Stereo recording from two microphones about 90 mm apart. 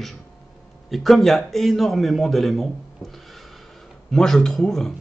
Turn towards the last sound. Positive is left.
turn(degrees=5)  # may be behind; listen again after turning